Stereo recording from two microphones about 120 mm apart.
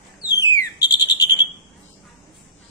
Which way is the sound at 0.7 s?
35° left (ahead or behind).